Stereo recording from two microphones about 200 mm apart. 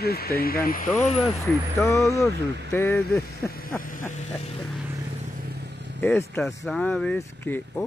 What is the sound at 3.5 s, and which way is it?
Vehicle, 45° left (ahead or behind).